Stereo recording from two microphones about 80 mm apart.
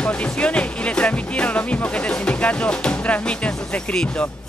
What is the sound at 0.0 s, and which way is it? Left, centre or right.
Speech, centre.